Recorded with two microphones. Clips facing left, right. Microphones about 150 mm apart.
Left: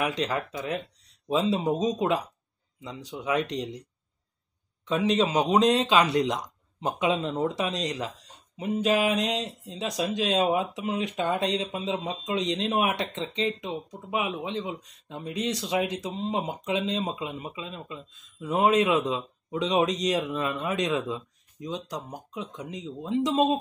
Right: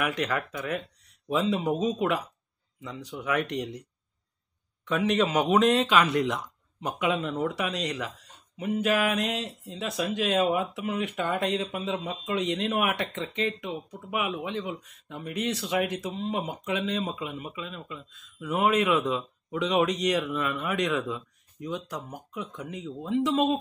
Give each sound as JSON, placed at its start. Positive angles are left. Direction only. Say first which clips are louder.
{"t": 0.0, "sound": "speech", "louder": "left 1 dB", "side_deg": 25}
{"t": 2.8, "sound": "speech", "louder": "even", "side_deg": 30}
{"t": 4.8, "sound": "a man's voice", "louder": "left 1 dB", "side_deg": 25}
{"t": 10.7, "sound": "speech", "louder": "left 1 dB", "side_deg": 35}
{"t": 11.5, "sound": "speech", "louder": "even", "side_deg": 20}
{"t": 12.6, "sound": "speech", "louder": "left 1 dB", "side_deg": 30}